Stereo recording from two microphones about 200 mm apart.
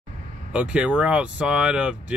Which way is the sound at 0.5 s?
5° right (ahead or behind).